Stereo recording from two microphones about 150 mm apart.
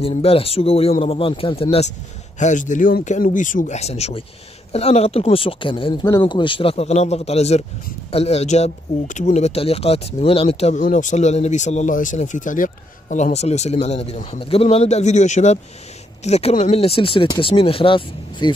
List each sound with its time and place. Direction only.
0.0 s speech: 40° left (ahead or behind)
2.3 s speech: 55° left (ahead or behind); by 18.5 s 35° left (ahead or behind)